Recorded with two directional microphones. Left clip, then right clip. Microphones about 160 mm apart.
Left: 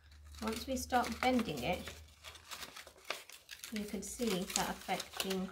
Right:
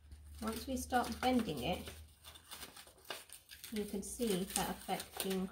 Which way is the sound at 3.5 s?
5° left (ahead or behind).